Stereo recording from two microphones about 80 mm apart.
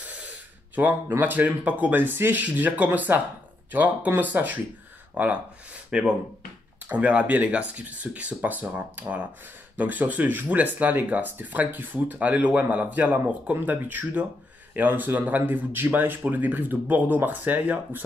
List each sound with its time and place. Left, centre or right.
0.0 s gasp: centre
1.0 s speech: right
1.3 s speech: centre